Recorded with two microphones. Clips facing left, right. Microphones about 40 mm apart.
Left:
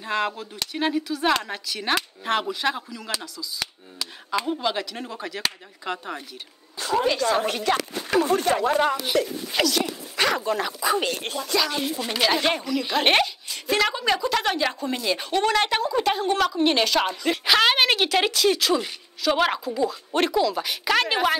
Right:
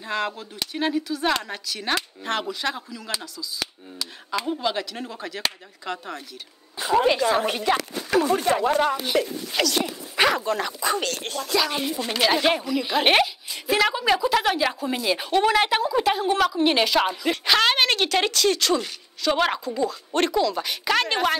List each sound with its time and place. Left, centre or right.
0.0 s speech: centre
6.8 s a woman's voice: centre
7.6 s speech: centre
9.8 s dog: centre
10.3 s speech: centre
11.0 s speech: centre
11.4 s speech: centre